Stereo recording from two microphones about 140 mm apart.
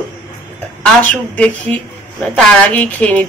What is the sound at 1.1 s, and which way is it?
A woman's voice, 10° left (ahead or behind).